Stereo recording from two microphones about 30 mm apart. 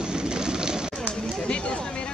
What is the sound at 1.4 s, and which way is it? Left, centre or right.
Speech, left.